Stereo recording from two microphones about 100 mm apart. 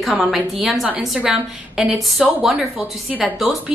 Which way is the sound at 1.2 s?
15° right (ahead or behind).